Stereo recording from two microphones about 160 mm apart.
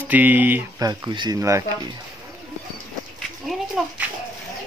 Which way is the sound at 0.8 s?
25° right (ahead or behind).